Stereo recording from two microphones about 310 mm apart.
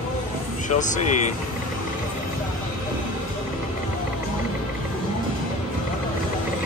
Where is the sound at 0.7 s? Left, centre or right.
Left.